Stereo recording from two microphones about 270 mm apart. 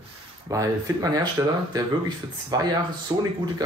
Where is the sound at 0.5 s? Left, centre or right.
Centre.